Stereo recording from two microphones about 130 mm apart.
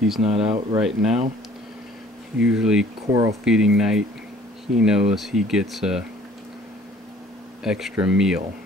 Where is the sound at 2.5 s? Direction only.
5° right (ahead or behind).